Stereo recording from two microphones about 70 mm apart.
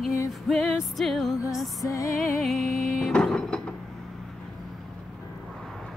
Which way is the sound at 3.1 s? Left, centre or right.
Centre.